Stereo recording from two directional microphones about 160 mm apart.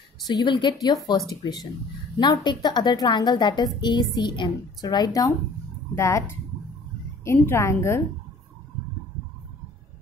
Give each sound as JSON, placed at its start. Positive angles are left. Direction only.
{"t": 0.3, "sound": "a woman's voice", "side_deg": 25}
{"t": 7.3, "sound": "a woman's voice", "side_deg": 15}